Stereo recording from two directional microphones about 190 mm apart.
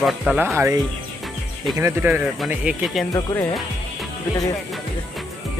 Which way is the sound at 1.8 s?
10° right (ahead or behind).